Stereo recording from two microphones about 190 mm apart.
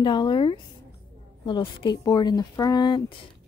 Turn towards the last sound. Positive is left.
turn(degrees=20)  # may be behind; listen again after turning